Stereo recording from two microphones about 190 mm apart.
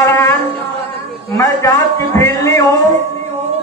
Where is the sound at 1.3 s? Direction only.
15° left (ahead or behind).